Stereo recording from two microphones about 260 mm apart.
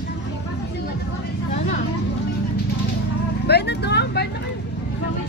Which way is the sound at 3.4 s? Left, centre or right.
Left.